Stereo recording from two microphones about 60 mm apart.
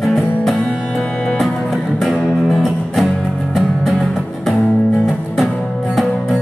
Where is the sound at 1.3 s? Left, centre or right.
Centre.